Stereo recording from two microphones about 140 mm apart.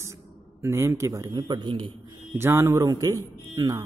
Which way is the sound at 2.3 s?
15° right (ahead or behind).